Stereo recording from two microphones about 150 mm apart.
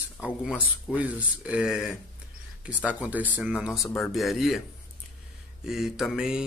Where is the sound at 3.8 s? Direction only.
20° left (ahead or behind).